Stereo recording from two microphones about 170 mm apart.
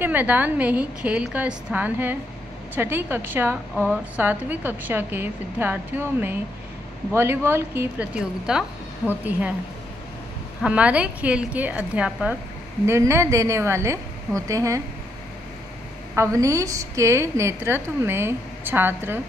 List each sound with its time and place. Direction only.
0.0 s a woman's voice: 10° right (ahead or behind)
10.6 s a woman's voice: 5° right (ahead or behind)
16.2 s a woman's voice: 20° right (ahead or behind)